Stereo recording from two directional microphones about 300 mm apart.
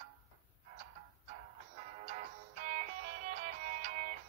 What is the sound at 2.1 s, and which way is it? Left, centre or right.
Music, right.